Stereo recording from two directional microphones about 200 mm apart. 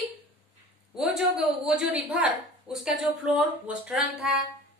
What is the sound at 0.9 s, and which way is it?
A woman's voice, centre (ahead or behind).